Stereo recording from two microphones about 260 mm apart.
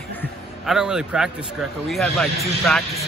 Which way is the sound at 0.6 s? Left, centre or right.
Centre.